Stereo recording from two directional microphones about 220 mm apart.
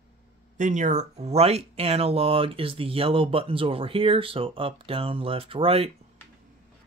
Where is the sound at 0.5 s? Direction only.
35° right (ahead or behind).